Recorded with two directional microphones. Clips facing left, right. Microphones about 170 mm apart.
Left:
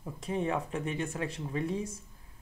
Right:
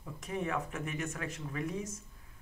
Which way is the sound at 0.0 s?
30° left (ahead or behind).